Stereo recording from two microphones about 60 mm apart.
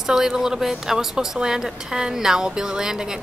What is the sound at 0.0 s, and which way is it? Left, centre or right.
Speech, centre.